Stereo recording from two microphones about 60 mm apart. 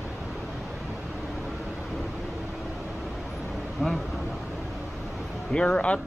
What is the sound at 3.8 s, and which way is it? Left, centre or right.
Vehicle, centre.